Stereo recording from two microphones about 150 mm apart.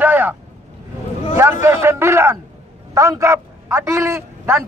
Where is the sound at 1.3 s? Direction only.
15° right (ahead or behind).